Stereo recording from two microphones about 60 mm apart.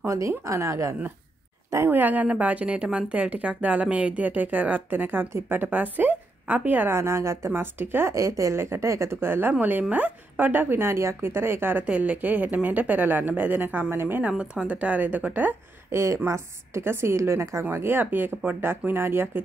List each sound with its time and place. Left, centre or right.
0.0 s a woman's voice: right
1.9 s a woman's voice: right
6.9 s a woman's voice: right
8.1 s a woman's voice: right
9.5 s a woman's voice: right
11.8 s a woman's voice: right
14.3 s a woman's voice: centre
15.9 s a woman's voice: right
17.6 s a woman's voice: right